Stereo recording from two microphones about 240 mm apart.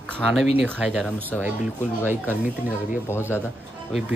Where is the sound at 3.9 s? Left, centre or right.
Centre.